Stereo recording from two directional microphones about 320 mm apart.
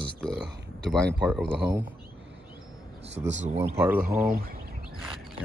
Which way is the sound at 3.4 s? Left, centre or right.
Right.